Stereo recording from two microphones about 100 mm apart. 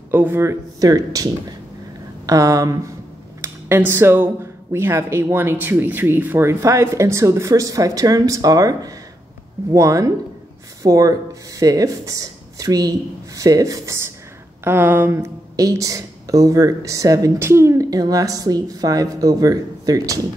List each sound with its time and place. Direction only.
0.1 s speech: 20° right (ahead or behind)
3.3 s a sound: 25° right (ahead or behind)
4.7 s speech: 25° right (ahead or behind)
6.6 s speech: 30° right (ahead or behind)
14.6 s speech: 20° right (ahead or behind)